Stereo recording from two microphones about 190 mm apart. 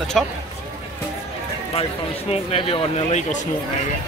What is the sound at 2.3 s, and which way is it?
Speech, 30° left (ahead or behind).